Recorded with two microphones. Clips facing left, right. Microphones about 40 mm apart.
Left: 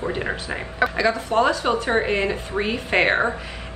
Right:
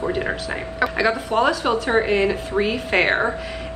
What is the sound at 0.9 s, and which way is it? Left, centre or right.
Speech, centre.